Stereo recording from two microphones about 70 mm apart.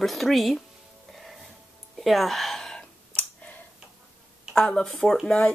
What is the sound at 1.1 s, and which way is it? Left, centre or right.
Music, centre.